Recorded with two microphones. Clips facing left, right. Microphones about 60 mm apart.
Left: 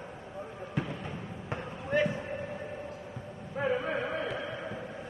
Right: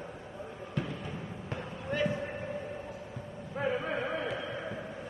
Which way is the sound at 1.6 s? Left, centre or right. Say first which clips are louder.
Left 3 dB; centre.